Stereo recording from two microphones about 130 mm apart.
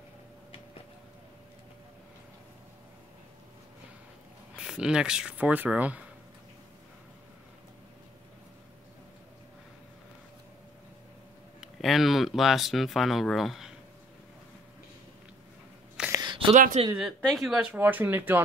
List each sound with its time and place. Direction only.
4.6 s speech: 5° right (ahead or behind)
11.6 s speech: centre (ahead or behind)
16.1 s a sound: 30° right (ahead or behind)
16.5 s speech: 80° right
17.0 s speech: centre (ahead or behind)